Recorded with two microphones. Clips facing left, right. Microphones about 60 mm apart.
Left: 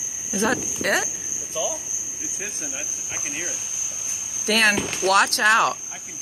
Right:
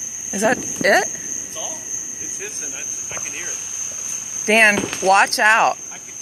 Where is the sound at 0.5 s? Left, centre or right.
Right.